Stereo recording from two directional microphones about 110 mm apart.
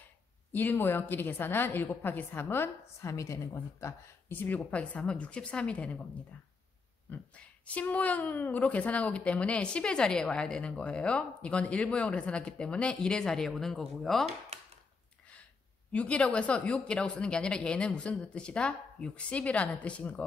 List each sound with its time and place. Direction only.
0.5 s a woman's voice: 15° left (ahead or behind)
3.8 s a woman's voice: 15° left (ahead or behind)
7.1 s a woman's voice: 15° left (ahead or behind)
15.9 s a woman's voice: 10° left (ahead or behind)